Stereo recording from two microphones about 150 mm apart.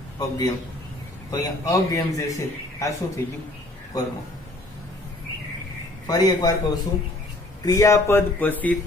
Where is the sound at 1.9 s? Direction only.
20° left (ahead or behind).